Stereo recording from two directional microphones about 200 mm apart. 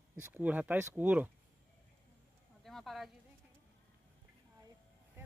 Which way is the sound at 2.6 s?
Centre (ahead or behind).